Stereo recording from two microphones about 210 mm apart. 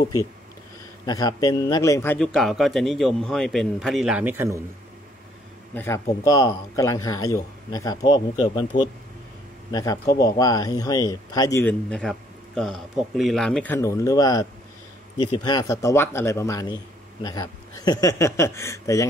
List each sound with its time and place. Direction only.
1.0 s speech: 20° left (ahead or behind)
2.1 s a man's voice: centre (ahead or behind)
6.2 s speech: 15° left (ahead or behind)